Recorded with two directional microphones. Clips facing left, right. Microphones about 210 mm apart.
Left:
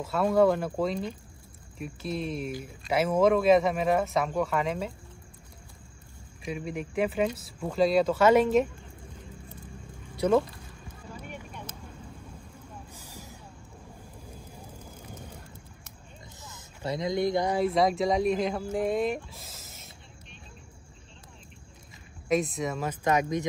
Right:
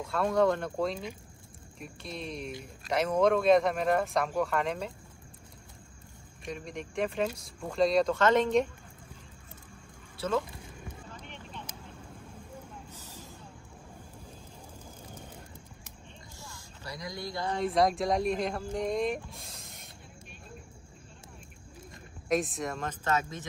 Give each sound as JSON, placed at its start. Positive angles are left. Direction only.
{"t": 0.0, "sound": "speech", "side_deg": 5}
{"t": 6.4, "sound": "speech", "side_deg": 5}
{"t": 10.1, "sound": "speech", "side_deg": 15}
{"t": 11.1, "sound": "vehicle", "side_deg": 10}
{"t": 12.9, "sound": "vehicle", "side_deg": 10}
{"t": 16.3, "sound": "vehicle", "side_deg": 20}
{"t": 17.6, "sound": "speech", "side_deg": 0}
{"t": 21.9, "sound": "speech", "side_deg": 0}